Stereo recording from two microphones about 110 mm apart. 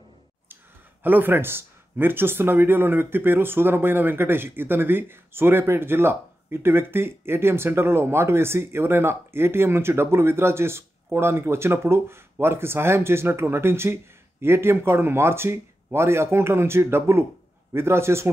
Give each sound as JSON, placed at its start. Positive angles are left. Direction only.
{"t": 1.0, "sound": "speech", "side_deg": -20}